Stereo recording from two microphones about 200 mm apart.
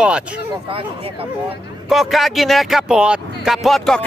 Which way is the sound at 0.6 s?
30° right (ahead or behind).